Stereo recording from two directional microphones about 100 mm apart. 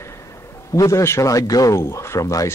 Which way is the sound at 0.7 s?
30° left (ahead or behind).